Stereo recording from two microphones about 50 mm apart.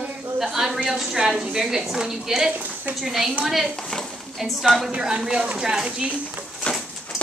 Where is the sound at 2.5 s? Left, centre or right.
Right.